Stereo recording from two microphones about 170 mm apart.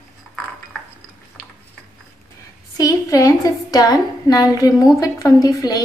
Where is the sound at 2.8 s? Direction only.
20° left (ahead or behind).